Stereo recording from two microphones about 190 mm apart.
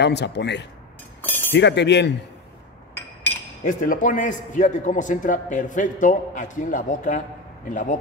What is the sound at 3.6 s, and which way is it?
A man's voice, 45° left (ahead or behind).